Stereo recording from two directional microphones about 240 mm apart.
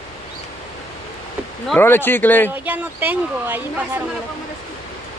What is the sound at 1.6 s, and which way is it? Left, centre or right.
Speech, centre.